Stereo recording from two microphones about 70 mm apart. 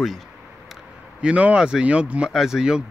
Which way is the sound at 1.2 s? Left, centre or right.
Centre.